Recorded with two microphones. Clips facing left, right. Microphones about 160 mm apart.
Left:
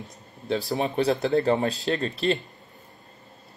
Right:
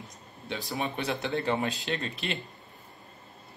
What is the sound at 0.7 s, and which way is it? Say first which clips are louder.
Speech: left 7 dB; 40° left (ahead or behind).